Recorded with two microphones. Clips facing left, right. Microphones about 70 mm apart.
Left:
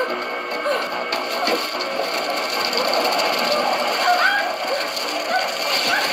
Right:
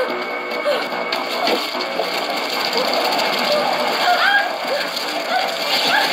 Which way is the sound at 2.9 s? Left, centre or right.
Left.